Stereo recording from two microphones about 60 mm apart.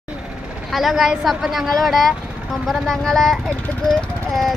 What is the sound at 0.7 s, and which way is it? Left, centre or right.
Speech, centre.